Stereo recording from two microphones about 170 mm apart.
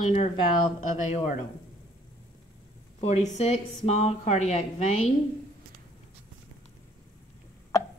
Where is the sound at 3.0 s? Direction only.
40° left (ahead or behind).